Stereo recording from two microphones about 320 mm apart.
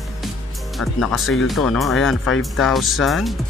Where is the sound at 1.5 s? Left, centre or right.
Centre.